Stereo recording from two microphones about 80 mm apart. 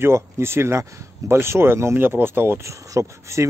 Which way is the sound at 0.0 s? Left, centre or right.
Right.